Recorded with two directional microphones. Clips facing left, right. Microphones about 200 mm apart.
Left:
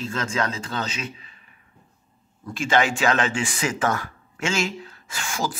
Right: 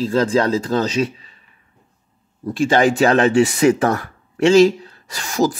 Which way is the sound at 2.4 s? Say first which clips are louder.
Right 7 dB; 35° right (ahead or behind).